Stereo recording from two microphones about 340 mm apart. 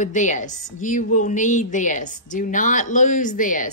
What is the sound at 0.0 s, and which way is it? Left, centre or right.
A woman's voice, left.